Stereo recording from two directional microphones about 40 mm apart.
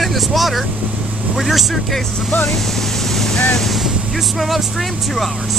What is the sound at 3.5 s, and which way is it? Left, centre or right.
Speech, centre.